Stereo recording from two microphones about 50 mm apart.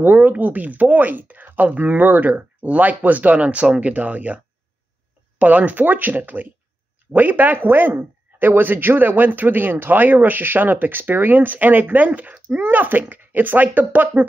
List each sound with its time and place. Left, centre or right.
0.0 s speech: right
5.4 s speech: right